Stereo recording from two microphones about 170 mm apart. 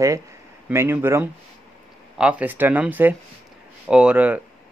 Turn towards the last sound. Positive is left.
turn(degrees=-10)  # may be behind; listen again after turning